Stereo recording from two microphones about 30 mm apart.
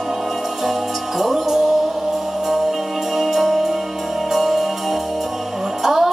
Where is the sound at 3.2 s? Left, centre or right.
Centre.